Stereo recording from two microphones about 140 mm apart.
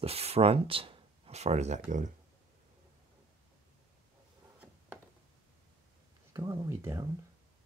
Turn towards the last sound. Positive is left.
turn(degrees=-25)  # may be behind; listen again after turning